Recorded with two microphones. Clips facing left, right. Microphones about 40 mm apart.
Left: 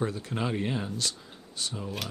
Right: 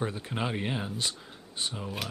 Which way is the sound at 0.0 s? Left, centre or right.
Right.